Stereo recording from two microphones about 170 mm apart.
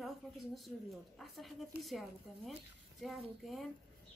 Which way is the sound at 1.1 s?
Centre (ahead or behind).